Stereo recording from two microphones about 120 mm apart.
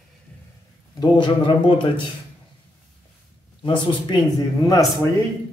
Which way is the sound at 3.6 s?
40° left (ahead or behind).